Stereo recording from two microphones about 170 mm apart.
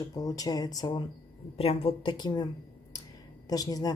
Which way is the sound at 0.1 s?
20° left (ahead or behind).